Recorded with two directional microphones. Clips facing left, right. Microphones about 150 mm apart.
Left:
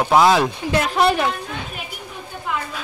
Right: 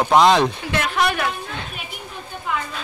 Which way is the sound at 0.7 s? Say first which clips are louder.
Left 5 dB; 30° left (ahead or behind).